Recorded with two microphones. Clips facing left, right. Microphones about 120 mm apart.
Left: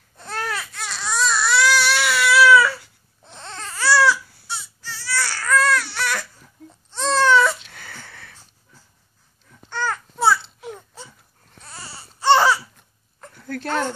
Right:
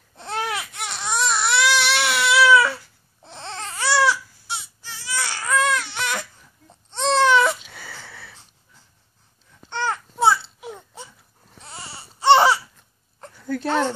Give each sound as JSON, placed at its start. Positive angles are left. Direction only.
{"t": 0.2, "sound": "baby cry", "side_deg": -20}
{"t": 6.9, "sound": "babbling", "side_deg": -25}
{"t": 7.6, "sound": "a sound", "side_deg": -5}
{"t": 9.7, "sound": "babbling", "side_deg": -20}
{"t": 10.6, "sound": "baby cry", "side_deg": -5}
{"t": 11.6, "sound": "baby cry", "side_deg": -25}